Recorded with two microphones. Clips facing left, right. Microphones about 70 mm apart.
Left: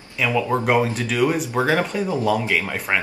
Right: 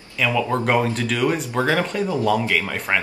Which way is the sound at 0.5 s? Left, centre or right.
Centre.